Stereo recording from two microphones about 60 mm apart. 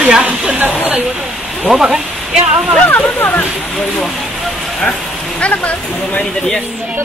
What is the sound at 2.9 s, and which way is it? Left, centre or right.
Speech, left.